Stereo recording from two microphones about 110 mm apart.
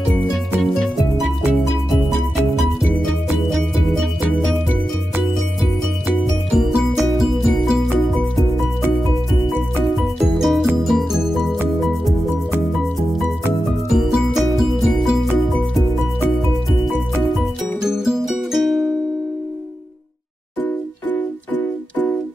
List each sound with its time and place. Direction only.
6.0 s music: centre (ahead or behind)
9.8 s music: centre (ahead or behind)
13.9 s music: centre (ahead or behind)
17.8 s music: 5° right (ahead or behind)
20.6 s music: 15° left (ahead or behind)